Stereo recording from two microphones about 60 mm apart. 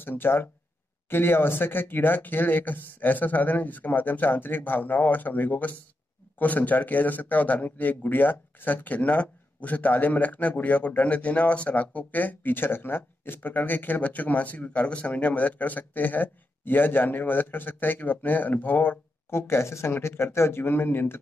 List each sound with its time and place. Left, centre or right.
0.0 s a man's voice: left